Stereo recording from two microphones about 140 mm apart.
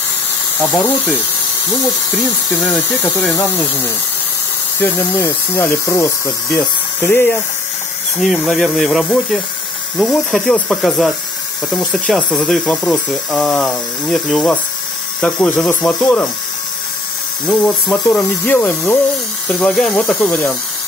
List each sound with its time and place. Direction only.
0.6 s speech: 10° left (ahead or behind)
2.5 s speech: 10° left (ahead or behind)
8.2 s speech: centre (ahead or behind)
17.5 s speech: 10° left (ahead or behind)